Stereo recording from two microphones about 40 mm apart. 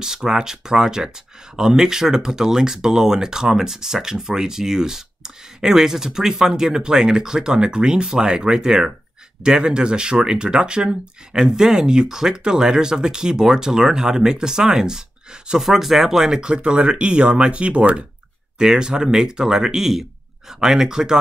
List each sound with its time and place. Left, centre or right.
0.0 s speech: centre
15.6 s speech: centre; by 18.0 s right
18.6 s speech: centre